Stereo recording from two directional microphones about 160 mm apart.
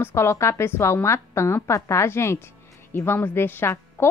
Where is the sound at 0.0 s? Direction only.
15° left (ahead or behind).